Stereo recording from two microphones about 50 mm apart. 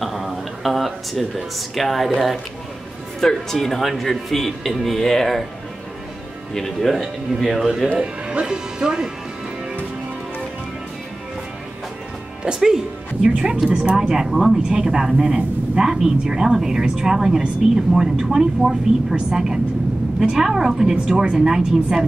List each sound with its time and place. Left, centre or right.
0.0 s speech: centre
6.5 s speech: centre
7.4 s speech: centre
8.0 s speech: centre
12.4 s a woman's voice: centre